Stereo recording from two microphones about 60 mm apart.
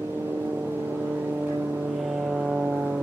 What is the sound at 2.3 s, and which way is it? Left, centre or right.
Vehicle, centre.